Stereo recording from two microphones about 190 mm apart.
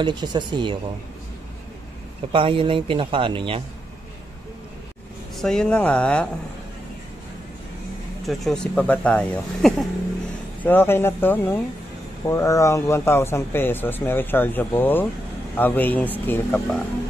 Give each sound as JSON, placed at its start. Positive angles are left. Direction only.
{"t": 0.0, "sound": "speech", "side_deg": -25}
{"t": 2.3, "sound": "speech", "side_deg": -25}
{"t": 5.3, "sound": "speech", "side_deg": 0}
{"t": 8.3, "sound": "speech", "side_deg": 5}